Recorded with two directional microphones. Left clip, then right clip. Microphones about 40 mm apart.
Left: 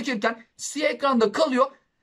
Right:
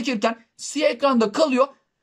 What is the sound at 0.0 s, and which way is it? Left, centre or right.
Speech, right.